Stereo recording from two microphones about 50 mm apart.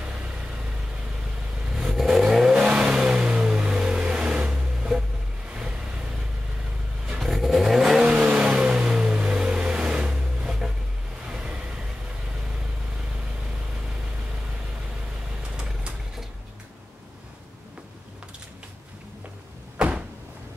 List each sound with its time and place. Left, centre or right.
0.0 s vehicle: centre
7.2 s vehicle: centre
8.1 s vehicle: right
15.5 s vehicle: centre